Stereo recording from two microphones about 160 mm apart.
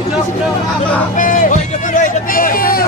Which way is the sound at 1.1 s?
55° left (ahead or behind).